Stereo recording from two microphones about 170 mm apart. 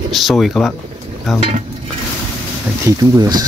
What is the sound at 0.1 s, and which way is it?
Speech, centre (ahead or behind).